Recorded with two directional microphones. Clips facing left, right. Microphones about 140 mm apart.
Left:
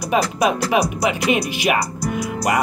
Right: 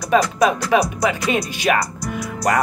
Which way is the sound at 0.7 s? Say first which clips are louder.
Right 1 dB; 15° left (ahead or behind).